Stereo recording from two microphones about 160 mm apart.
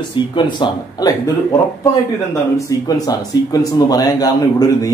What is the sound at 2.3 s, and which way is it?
Speech, 20° left (ahead or behind).